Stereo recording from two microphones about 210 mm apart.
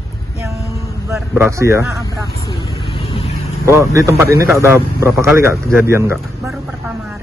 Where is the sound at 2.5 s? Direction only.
25° left (ahead or behind).